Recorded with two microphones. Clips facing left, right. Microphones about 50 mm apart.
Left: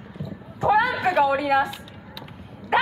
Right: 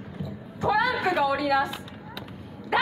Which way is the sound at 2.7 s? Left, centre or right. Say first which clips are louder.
Left 3 dB; left.